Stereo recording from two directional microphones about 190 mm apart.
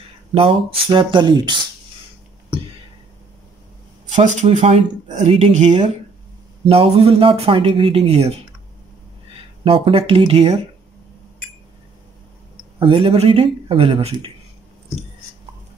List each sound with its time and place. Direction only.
0.3 s speech: 30° right (ahead or behind)
4.0 s speech: 40° right (ahead or behind)
9.7 s speech: 30° right (ahead or behind)
12.7 s speech: 30° right (ahead or behind)